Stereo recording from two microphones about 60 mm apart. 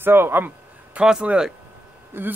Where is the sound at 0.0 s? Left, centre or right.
Right.